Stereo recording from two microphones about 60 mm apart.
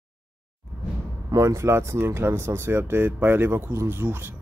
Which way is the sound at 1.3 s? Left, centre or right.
Right.